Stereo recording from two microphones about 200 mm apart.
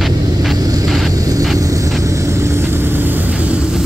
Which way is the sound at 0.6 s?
20° right (ahead or behind).